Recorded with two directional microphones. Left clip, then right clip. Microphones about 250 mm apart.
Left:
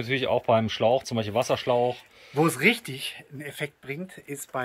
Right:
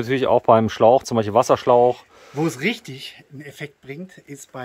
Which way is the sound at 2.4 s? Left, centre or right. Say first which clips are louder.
Left 1 dB; centre.